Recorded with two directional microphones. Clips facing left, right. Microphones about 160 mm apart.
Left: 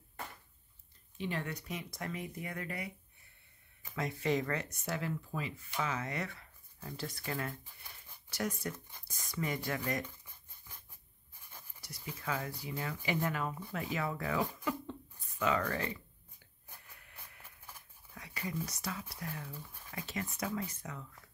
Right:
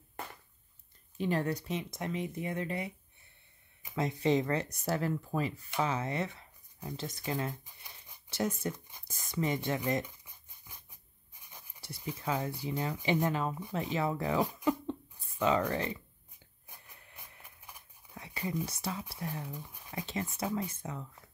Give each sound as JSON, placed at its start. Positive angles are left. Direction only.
{"t": 1.1, "sound": "speech", "side_deg": -40}
{"t": 16.6, "sound": "a sound", "side_deg": -15}
{"t": 18.7, "sound": "speech", "side_deg": -25}